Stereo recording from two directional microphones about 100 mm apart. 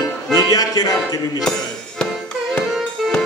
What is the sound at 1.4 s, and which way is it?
Music, 5° left (ahead or behind).